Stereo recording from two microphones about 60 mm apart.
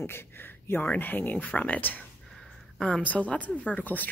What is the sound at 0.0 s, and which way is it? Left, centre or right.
Speech, left.